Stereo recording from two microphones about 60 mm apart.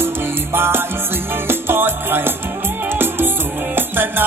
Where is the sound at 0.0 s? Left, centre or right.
Right.